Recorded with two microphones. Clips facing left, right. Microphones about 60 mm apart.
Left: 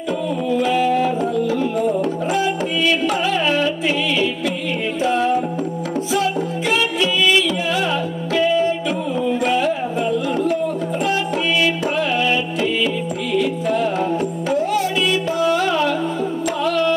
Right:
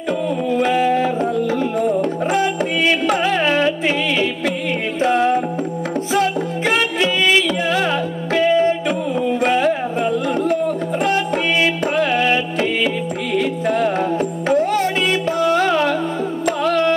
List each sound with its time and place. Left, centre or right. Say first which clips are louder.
0.5 s music: right 1 dB; right